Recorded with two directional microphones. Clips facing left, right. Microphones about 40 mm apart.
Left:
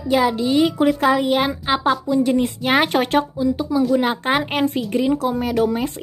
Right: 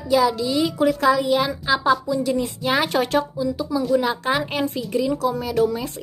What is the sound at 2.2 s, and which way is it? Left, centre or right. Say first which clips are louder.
A woman's voice: left 3 dB; left.